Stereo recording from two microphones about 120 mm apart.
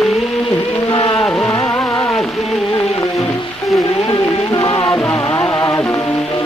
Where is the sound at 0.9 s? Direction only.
45° left (ahead or behind).